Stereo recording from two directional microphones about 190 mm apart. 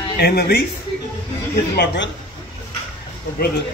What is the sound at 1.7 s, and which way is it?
Speech, 65° left (ahead or behind).